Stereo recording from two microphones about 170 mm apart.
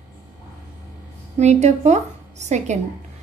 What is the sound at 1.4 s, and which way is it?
A woman's voice, 40° right (ahead or behind).